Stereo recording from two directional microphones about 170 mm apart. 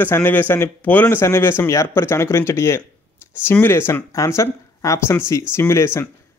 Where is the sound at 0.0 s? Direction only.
10° left (ahead or behind).